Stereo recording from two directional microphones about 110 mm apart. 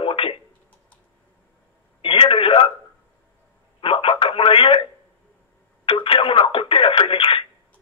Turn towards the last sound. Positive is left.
turn(degrees=55)  # may be behind; listen again after turning